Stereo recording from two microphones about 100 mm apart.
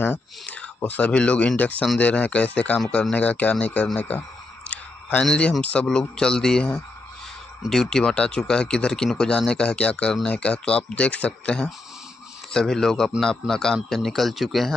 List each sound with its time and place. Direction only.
0.0 s a man's voice: 15° left (ahead or behind); by 14.7 s centre (ahead or behind)